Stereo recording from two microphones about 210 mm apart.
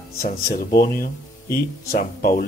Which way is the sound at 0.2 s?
45° left (ahead or behind).